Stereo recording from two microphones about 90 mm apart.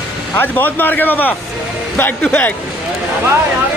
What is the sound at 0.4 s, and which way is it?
Speech, 20° left (ahead or behind).